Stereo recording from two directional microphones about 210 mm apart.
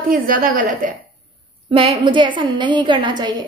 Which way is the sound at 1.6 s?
25° right (ahead or behind).